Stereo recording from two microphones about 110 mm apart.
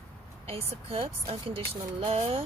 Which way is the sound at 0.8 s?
60° right (ahead or behind).